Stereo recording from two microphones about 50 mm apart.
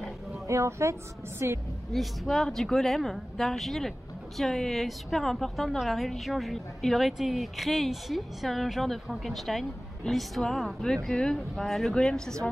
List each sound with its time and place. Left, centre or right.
0.5 s speech: right
1.4 s a woman's voice: right
1.9 s a woman's voice: centre